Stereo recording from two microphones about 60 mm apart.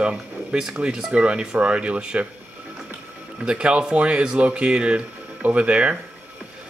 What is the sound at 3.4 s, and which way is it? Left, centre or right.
Speech, centre.